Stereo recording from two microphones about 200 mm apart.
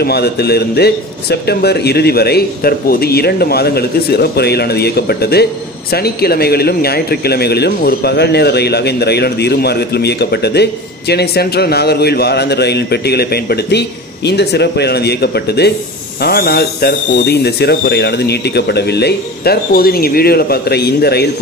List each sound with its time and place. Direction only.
0.0 s a man's voice: 55° left (ahead or behind)